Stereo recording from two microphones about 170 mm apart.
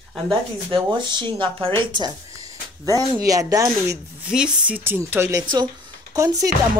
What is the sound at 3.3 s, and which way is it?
Speech, 20° right (ahead or behind).